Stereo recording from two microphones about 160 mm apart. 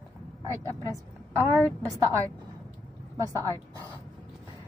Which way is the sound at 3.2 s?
20° right (ahead or behind).